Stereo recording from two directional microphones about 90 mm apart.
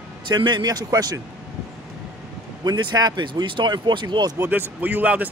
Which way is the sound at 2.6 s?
50° right (ahead or behind).